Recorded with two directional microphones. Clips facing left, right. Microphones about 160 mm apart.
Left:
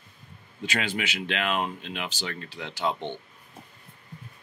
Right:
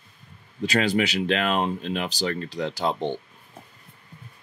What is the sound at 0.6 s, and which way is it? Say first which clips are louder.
Speech: right 8 dB; 35° right (ahead or behind).